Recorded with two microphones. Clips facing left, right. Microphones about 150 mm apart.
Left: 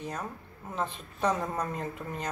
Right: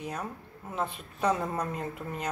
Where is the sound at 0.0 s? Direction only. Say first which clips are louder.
Right 1 dB; 10° right (ahead or behind).